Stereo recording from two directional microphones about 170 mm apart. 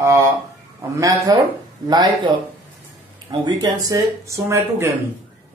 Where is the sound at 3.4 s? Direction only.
25° right (ahead or behind).